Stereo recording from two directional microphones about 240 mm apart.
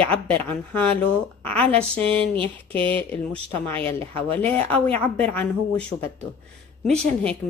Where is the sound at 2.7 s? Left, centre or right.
Right.